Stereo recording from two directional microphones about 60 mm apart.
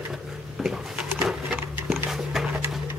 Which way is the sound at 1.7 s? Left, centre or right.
Right.